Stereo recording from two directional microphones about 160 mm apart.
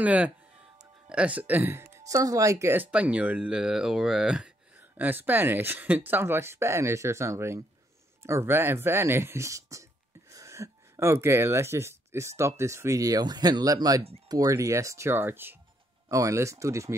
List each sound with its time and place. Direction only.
0.0 s speech: 10° right (ahead or behind)